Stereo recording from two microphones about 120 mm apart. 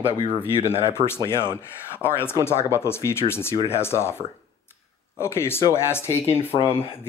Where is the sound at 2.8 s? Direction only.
20° left (ahead or behind).